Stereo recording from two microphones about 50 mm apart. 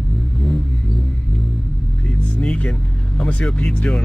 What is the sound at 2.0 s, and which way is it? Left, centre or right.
Vehicle, left.